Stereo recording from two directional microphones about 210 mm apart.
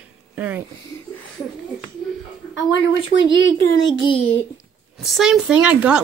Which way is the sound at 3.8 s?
20° left (ahead or behind).